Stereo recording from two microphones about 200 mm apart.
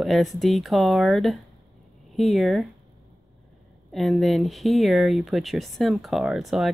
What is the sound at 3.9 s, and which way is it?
Speech, centre (ahead or behind).